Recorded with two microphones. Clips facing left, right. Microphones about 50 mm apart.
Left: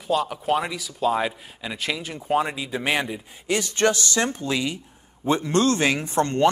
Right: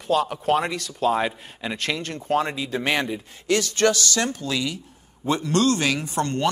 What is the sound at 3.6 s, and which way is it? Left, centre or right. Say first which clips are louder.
Speech: even; left.